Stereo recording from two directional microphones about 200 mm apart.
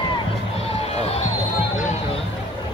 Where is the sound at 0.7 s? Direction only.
30° left (ahead or behind).